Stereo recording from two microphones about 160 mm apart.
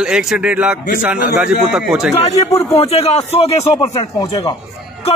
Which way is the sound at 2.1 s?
45° left (ahead or behind).